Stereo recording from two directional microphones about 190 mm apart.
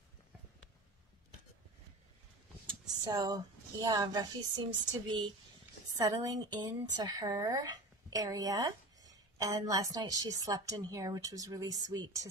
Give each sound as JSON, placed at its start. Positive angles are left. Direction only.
{"t": 2.6, "sound": "a woman's voice", "side_deg": -20}